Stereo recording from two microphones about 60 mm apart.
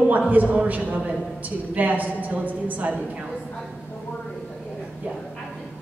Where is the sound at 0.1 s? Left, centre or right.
Right.